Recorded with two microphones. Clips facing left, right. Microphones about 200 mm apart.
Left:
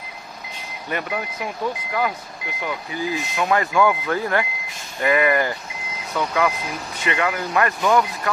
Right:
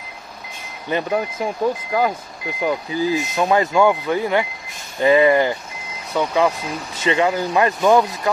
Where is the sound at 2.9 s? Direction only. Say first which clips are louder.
Right 6 dB; 25° right (ahead or behind).